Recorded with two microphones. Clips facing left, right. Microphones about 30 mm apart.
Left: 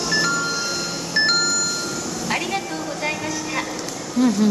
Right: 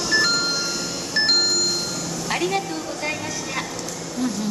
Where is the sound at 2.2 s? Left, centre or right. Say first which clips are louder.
Right 1 dB; centre.